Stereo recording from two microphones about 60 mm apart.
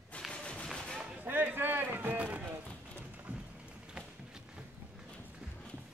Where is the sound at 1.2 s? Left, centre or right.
Right.